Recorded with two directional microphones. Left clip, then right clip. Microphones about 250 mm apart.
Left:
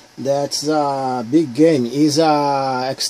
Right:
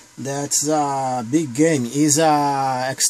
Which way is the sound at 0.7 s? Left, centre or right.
Right.